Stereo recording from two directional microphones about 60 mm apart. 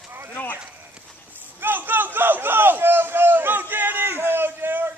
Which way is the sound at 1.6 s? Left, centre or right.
Right.